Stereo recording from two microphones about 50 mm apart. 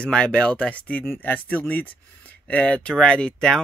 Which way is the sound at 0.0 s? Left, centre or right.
Centre.